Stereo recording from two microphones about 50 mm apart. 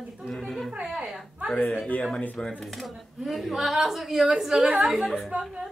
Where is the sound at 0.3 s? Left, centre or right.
Centre.